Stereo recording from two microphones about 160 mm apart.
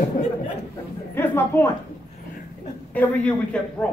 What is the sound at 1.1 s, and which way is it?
Speech, 15° left (ahead or behind).